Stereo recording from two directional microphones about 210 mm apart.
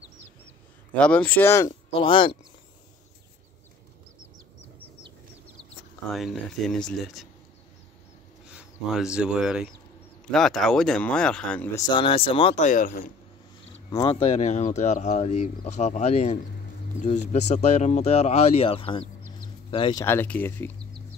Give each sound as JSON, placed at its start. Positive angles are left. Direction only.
{"t": 0.9, "sound": "speech", "side_deg": 5}
{"t": 2.0, "sound": "speech", "side_deg": 25}
{"t": 6.1, "sound": "speech", "side_deg": 0}
{"t": 8.5, "sound": "speech", "side_deg": -5}
{"t": 11.9, "sound": "speech", "side_deg": 25}
{"t": 12.6, "sound": "speech", "side_deg": 40}
{"t": 13.8, "sound": "speech", "side_deg": 20}
{"t": 14.3, "sound": "speech", "side_deg": 30}
{"t": 20.1, "sound": "speech", "side_deg": 10}